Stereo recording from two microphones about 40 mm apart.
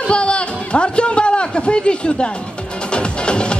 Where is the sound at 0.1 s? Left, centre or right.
Left.